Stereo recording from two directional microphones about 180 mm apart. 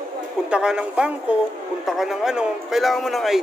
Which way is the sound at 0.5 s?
5° right (ahead or behind).